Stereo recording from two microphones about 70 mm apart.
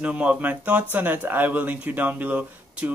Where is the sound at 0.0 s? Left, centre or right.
Centre.